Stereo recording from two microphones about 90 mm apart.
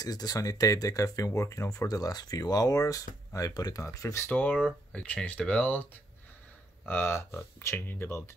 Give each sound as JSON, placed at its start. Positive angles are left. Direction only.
{"t": 0.0, "sound": "speech", "side_deg": 45}
{"t": 4.3, "sound": "speech", "side_deg": 20}
{"t": 6.9, "sound": "speech", "side_deg": 25}